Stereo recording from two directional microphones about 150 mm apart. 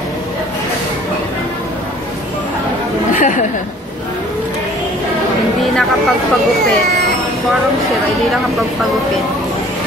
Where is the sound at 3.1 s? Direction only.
55° left (ahead or behind).